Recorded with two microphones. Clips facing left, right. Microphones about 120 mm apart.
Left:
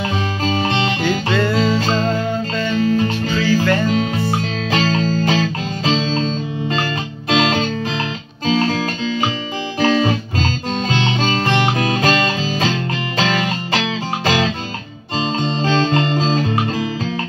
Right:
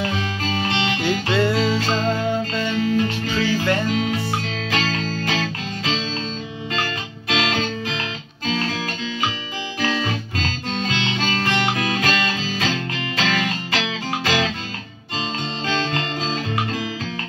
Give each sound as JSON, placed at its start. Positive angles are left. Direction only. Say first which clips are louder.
{"t": 0.5, "sound": "music", "louder": "left 4 dB", "side_deg": 35}
{"t": 1.0, "sound": "music", "louder": "even", "side_deg": -15}
{"t": 1.6, "sound": "music", "louder": "left 3 dB", "side_deg": 40}
{"t": 15.6, "sound": "music", "louder": "left 7 dB", "side_deg": 35}